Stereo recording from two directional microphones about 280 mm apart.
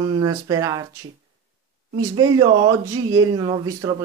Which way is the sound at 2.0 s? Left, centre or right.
Centre.